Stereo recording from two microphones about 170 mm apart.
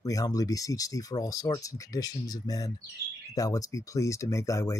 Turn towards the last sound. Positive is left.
turn(degrees=15)  # may be behind; listen again after turning